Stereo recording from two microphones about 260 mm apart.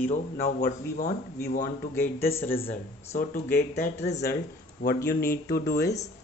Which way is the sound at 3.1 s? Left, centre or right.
Left.